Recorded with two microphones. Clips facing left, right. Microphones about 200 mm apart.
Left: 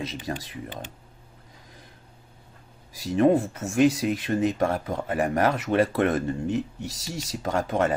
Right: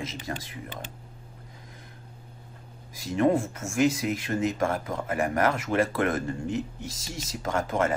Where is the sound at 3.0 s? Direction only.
30° left (ahead or behind).